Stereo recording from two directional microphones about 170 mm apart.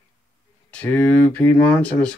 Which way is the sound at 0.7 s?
10° left (ahead or behind).